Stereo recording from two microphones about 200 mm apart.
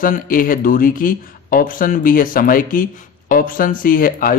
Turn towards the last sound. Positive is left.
turn(degrees=45)  # may be behind; listen again after turning